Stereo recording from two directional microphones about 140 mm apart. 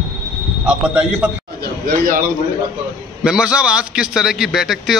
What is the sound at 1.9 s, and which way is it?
Speech, 80° right.